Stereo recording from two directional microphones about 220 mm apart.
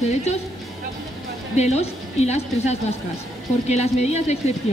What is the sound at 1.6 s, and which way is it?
A woman's voice, 30° left (ahead or behind).